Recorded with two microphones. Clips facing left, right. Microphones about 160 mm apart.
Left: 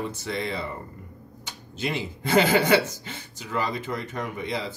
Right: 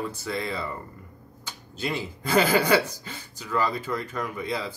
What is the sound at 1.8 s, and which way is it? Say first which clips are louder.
Speech: left 1 dB; 20° left (ahead or behind).